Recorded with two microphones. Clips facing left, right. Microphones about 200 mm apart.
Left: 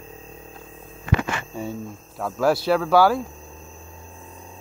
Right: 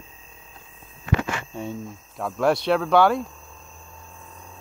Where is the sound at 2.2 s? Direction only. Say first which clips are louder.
Left 1 dB; centre (ahead or behind).